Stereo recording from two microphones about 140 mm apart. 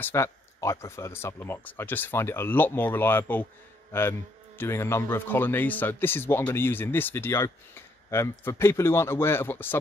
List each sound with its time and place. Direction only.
0.0 s speech: 20° left (ahead or behind)